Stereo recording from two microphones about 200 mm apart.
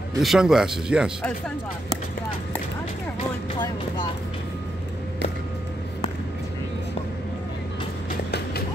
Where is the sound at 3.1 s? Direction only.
25° left (ahead or behind).